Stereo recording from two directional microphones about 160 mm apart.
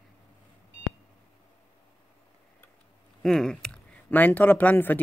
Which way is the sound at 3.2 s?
5° left (ahead or behind).